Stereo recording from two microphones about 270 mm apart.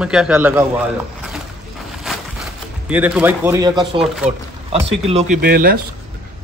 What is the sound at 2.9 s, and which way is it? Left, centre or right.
Speech, centre.